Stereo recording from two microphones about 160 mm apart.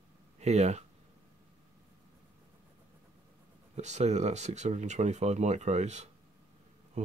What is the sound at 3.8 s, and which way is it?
Speech, 45° right (ahead or behind).